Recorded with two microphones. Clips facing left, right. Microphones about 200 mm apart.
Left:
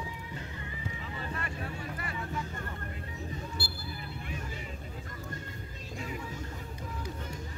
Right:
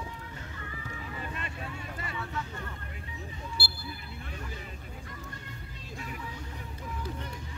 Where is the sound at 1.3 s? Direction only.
25° right (ahead or behind).